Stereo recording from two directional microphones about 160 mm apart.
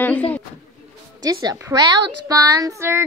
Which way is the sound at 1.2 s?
25° right (ahead or behind).